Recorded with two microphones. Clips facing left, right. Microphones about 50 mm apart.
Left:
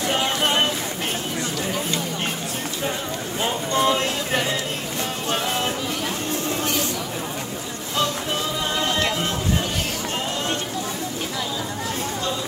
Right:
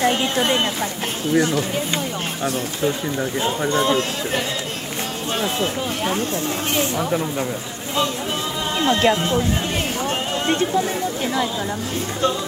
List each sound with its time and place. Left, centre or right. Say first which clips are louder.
3.8 s speech: right 1 dB; centre
8.8 s speech: right 9 dB; right